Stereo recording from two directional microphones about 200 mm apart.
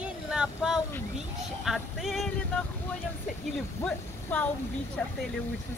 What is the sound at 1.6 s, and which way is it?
Male singing, centre (ahead or behind).